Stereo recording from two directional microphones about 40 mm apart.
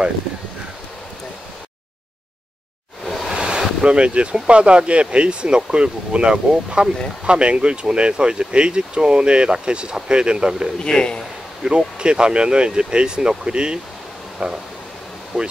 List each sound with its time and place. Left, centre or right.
3.3 s a sound: right
3.8 s speech: right
10.8 s a man's voice: left
11.6 s speech: right
15.3 s speech: centre